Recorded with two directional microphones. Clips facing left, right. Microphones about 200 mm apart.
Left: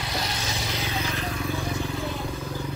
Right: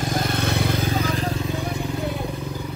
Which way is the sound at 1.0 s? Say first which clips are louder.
Right 5 dB; 35° right (ahead or behind).